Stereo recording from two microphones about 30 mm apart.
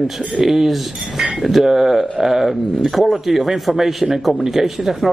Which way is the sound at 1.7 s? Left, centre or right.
Centre.